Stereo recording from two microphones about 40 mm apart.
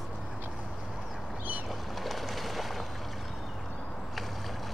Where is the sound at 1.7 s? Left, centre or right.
Centre.